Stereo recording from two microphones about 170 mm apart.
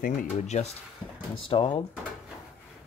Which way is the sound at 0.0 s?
50° left (ahead or behind).